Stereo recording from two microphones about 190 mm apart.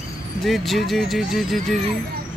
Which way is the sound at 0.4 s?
Centre (ahead or behind).